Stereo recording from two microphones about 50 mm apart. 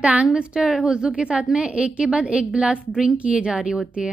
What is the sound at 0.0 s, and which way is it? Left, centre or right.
Speech, right.